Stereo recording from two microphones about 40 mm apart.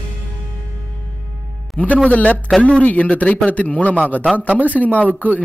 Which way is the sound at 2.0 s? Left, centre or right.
Left.